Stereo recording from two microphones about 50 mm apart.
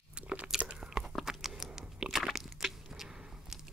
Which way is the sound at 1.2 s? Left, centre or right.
Centre.